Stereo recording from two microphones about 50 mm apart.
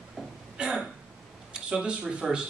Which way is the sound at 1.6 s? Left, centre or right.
Centre.